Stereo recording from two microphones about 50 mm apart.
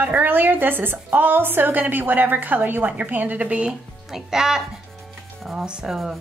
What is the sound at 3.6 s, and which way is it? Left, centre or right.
Speech, centre.